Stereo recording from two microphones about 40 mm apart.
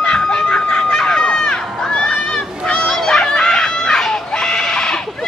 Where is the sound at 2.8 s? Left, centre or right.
Centre.